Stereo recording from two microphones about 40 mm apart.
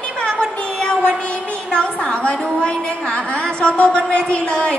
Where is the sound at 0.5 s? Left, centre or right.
Left.